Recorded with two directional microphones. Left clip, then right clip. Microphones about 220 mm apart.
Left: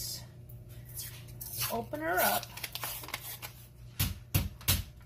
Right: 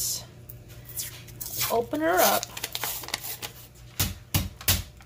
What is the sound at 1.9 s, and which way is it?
Speech, 35° right (ahead or behind).